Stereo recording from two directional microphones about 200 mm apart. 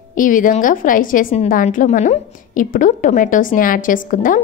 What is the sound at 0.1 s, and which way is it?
A woman's voice, 40° left (ahead or behind).